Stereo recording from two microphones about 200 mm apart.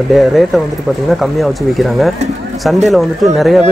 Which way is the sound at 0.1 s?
Centre (ahead or behind).